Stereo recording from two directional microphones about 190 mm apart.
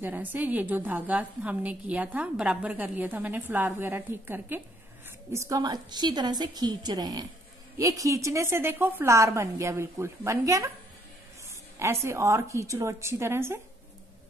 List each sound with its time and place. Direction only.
0.0 s a woman's voice: 10° right (ahead or behind)
11.8 s a woman's voice: 15° right (ahead or behind)